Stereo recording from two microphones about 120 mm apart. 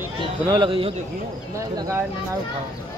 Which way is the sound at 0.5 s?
40° right (ahead or behind).